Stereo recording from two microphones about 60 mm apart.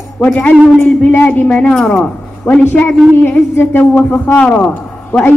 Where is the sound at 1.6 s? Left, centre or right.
Centre.